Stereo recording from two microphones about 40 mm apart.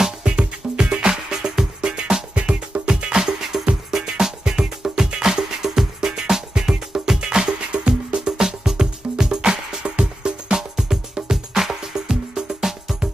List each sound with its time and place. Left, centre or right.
0.0 s music: right
3.2 s music: centre
10.8 s music: centre